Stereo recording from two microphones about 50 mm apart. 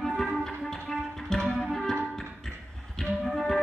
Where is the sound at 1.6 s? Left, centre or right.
Centre.